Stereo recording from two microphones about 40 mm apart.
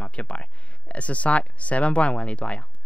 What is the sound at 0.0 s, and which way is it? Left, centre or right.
Speech, left.